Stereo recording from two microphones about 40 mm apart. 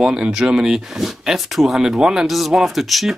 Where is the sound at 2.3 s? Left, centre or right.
Centre.